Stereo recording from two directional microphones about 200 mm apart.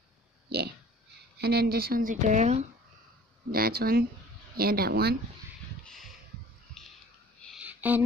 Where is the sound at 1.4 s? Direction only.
50° right (ahead or behind).